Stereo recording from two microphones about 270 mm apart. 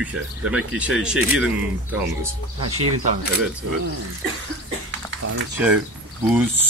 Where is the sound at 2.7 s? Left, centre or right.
Right.